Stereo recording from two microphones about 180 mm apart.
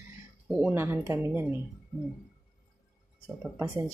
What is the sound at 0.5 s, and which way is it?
Speech, 5° right (ahead or behind).